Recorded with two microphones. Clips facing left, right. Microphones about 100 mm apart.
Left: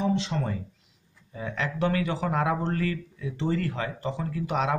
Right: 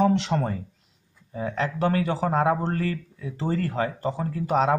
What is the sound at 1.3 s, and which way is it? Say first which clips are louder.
Speech: right 4 dB; 35° right (ahead or behind).